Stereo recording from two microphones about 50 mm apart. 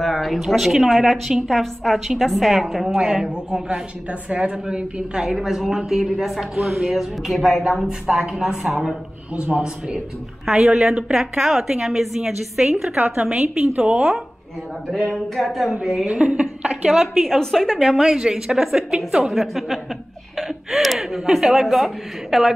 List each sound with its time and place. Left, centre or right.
0.0 s speech: centre
3.0 s a woman's voice: centre
9.3 s a woman's voice: right; by 12.9 s centre
12.9 s a woman's voice: right
15.1 s speech: centre
16.1 s a woman's voice: right
16.9 s speech: centre
17.9 s a woman's voice: centre
19.4 s speech: centre